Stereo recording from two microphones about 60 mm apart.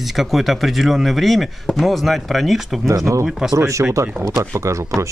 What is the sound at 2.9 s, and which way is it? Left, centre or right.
Speech, right.